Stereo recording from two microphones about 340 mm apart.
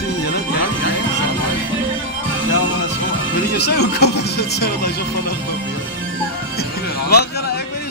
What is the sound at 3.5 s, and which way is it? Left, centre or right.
Music, left.